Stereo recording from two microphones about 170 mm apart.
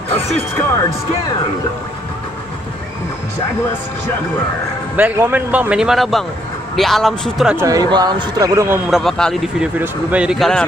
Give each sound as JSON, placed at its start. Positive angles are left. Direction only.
{"t": 0.1, "sound": "speech", "side_deg": 10}
{"t": 4.9, "sound": "a man's voice", "side_deg": -10}
{"t": 7.5, "sound": "a man's voice", "side_deg": -20}
{"t": 8.9, "sound": "a man's voice", "side_deg": 0}